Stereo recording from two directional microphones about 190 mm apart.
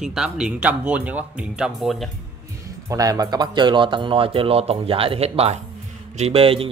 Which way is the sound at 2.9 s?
20° right (ahead or behind).